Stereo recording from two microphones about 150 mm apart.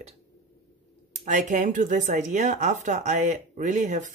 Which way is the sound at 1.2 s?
55° right (ahead or behind).